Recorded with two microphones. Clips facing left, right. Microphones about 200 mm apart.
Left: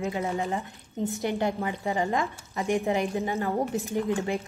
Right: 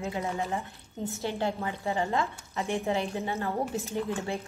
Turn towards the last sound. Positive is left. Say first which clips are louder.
# left 4 dB
turn(degrees=15)  # may be behind; listen again after turning